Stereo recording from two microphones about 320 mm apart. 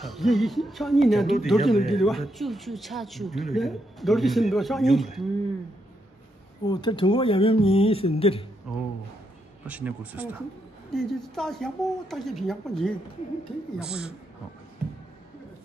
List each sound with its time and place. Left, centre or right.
0.0 s speech: centre
6.6 s speech: centre
9.7 s speech: centre